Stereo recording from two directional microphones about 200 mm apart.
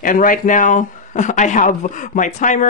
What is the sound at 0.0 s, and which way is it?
Speech, 45° left (ahead or behind).